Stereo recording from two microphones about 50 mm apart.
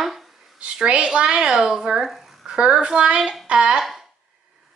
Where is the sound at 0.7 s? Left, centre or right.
Right.